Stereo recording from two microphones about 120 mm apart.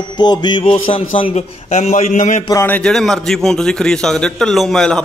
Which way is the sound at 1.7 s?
75° left (ahead or behind).